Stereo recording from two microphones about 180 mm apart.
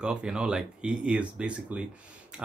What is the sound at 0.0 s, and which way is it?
Speech, 5° right (ahead or behind).